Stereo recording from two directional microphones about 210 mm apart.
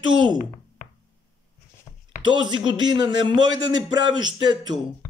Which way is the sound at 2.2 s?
20° right (ahead or behind).